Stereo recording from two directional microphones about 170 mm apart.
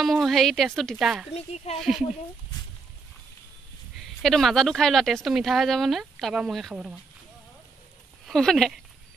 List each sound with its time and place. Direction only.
0.0 s speech: centre (ahead or behind)
1.3 s speech: 35° left (ahead or behind)
1.8 s speech: centre (ahead or behind)
4.0 s speech: centre (ahead or behind)
8.3 s speech: 5° left (ahead or behind)